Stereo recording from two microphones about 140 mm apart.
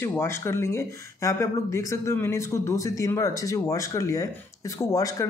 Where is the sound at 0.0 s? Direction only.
15° left (ahead or behind).